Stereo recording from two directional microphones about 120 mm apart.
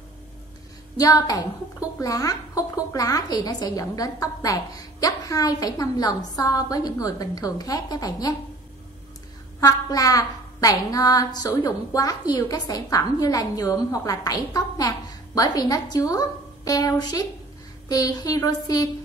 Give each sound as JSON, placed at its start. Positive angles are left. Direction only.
{"t": 0.9, "sound": "a woman's voice", "side_deg": 30}
{"t": 9.6, "sound": "a woman's voice", "side_deg": 30}